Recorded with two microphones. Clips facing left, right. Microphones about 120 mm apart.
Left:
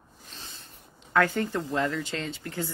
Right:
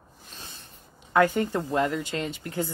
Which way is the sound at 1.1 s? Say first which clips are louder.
Right 3 dB; 15° right (ahead or behind).